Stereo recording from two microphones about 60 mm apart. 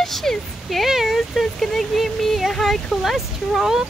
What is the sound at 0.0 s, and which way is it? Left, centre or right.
Speech, centre.